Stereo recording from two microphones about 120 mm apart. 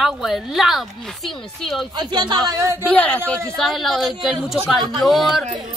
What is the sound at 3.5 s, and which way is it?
Speech, centre (ahead or behind).